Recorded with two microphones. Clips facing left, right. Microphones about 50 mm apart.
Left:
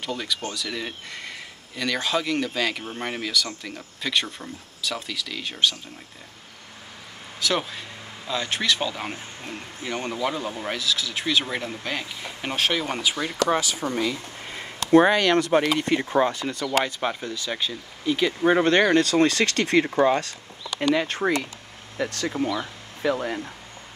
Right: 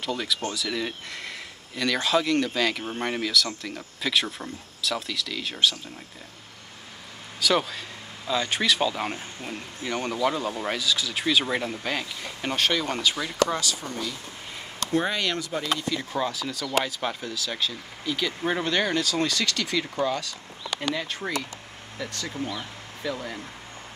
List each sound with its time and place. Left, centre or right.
0.0 s speech: centre
7.3 s a man's voice: centre
13.6 s speech: left
14.9 s speech: left
15.8 s speech: left
16.8 s speech: centre
18.6 s speech: left
22.3 s speech: left